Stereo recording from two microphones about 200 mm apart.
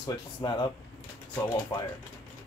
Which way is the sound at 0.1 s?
20° left (ahead or behind).